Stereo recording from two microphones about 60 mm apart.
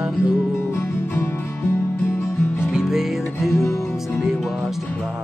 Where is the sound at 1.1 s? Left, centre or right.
Left.